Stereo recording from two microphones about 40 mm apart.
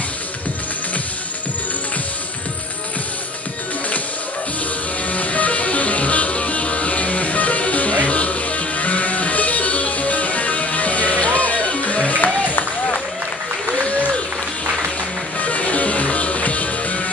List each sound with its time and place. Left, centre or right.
5.1 s music: left
15.4 s music: left